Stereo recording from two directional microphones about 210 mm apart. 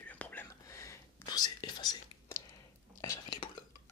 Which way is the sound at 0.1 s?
5° left (ahead or behind).